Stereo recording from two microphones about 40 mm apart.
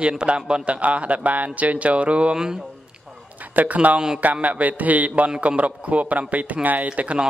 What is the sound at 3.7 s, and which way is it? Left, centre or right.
Speech, right.